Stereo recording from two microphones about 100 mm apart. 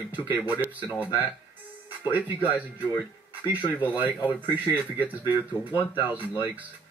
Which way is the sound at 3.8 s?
15° right (ahead or behind).